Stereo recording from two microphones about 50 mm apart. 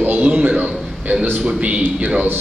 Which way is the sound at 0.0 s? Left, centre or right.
Right.